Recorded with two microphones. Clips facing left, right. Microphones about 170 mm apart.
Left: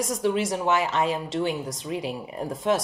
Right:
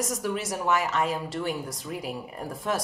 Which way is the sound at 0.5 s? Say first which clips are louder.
Left 2 dB; 25° left (ahead or behind).